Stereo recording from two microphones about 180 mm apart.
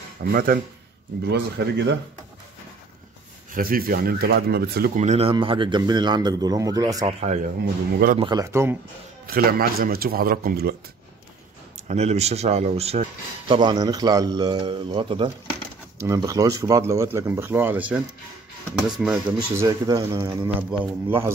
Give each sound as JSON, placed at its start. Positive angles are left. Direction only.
{"t": 0.2, "sound": "speech", "side_deg": -55}
{"t": 1.2, "sound": "speech", "side_deg": -70}
{"t": 3.5, "sound": "speech", "side_deg": -55}
{"t": 4.9, "sound": "speech", "side_deg": -40}
{"t": 8.2, "sound": "speech", "side_deg": -20}
{"t": 9.2, "sound": "speech", "side_deg": -55}
{"t": 11.9, "sound": "speech", "side_deg": -35}
{"t": 16.0, "sound": "speech", "side_deg": -20}
{"t": 19.5, "sound": "speech", "side_deg": -20}